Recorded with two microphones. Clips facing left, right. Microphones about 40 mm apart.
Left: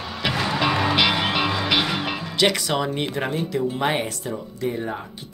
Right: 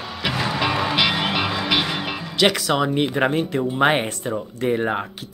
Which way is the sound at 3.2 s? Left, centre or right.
Right.